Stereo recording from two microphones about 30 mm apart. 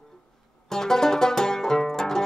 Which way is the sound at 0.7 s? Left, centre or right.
Centre.